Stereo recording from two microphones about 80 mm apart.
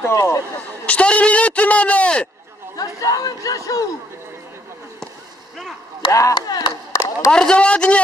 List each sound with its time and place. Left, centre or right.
0.0 s speech: left
0.8 s a man's voice: centre
2.7 s speech: left
6.3 s speech: left
7.2 s a man's voice: centre